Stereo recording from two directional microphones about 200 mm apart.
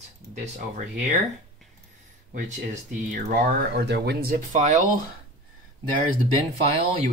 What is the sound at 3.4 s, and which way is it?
Speech, 50° right (ahead or behind).